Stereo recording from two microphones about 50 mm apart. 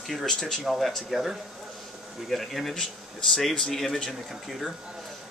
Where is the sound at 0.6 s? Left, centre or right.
Centre.